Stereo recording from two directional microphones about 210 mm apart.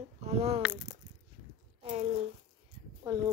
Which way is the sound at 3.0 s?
15° right (ahead or behind).